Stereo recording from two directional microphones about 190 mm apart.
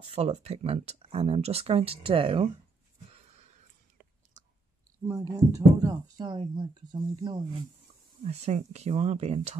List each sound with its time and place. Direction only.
0.0 s speech: 30° right (ahead or behind)
4.0 s whispering: 40° right (ahead or behind)
5.0 s speech: 15° right (ahead or behind)
8.2 s speech: 35° right (ahead or behind)